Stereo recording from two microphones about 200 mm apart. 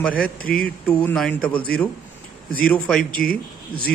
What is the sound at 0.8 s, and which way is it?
Speech, 5° left (ahead or behind).